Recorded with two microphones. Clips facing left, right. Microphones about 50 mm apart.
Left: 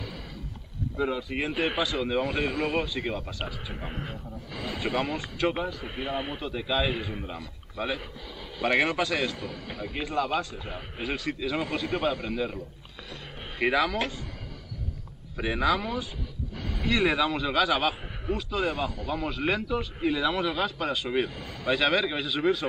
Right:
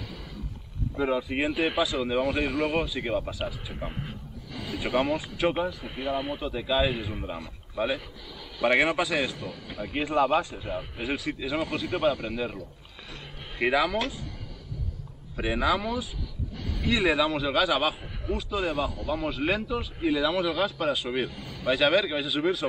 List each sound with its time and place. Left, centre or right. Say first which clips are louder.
0.9 s a man's voice: right 3 dB; centre
1.6 s a man's voice: left 1 dB; centre
3.8 s a man's voice: right 3 dB; centre
4.6 s speech: right 2 dB; centre
5.9 s a man's voice: right 2 dB; centre
6.4 s a man's voice: right 2 dB; centre
9.9 s speech: right 5 dB; centre
10.6 s a man's voice: right 3 dB; centre
13.6 s a man's voice: right 1 dB; centre
15.3 s a man's voice: even; centre